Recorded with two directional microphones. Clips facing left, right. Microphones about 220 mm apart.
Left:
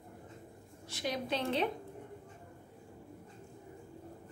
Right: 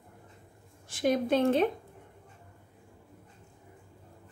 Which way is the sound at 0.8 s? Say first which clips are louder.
Right 10 dB; 50° right (ahead or behind).